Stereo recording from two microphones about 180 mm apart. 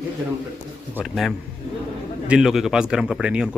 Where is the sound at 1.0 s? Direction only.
Centre (ahead or behind).